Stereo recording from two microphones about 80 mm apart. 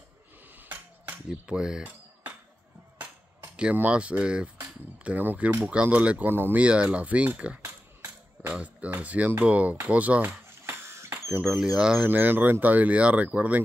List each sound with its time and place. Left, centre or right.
0.6 s cutlery: right
3.7 s speech: centre
6.6 s speech: centre
10.6 s a sound: right
11.4 s speech: centre
12.1 s speech: right